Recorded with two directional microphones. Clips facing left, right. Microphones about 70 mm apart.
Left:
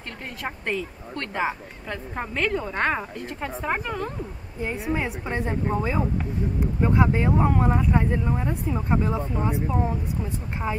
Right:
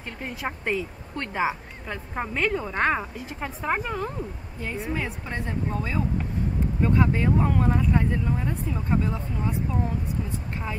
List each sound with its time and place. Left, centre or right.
0.2 s a woman's voice: centre
4.6 s speech: left